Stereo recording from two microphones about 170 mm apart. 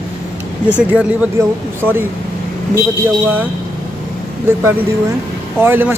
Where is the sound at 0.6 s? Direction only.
10° right (ahead or behind).